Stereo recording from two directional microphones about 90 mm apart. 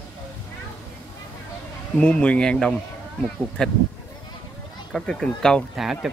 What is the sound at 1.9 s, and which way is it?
Speech, 10° left (ahead or behind).